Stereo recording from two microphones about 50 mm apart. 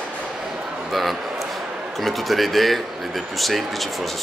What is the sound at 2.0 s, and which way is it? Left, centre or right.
Speech, centre.